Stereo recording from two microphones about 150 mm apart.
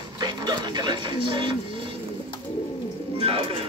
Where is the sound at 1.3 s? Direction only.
30° right (ahead or behind).